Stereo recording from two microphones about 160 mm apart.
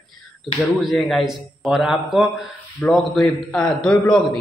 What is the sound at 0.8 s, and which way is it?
A man's voice, centre (ahead or behind).